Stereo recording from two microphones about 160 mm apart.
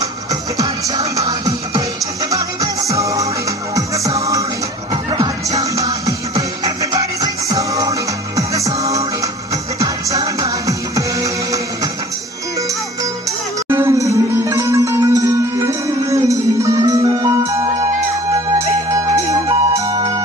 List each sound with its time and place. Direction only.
0.3 s music: 20° right (ahead or behind)
13.7 s music: 15° right (ahead or behind)